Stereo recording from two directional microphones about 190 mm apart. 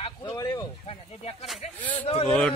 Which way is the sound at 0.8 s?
30° left (ahead or behind).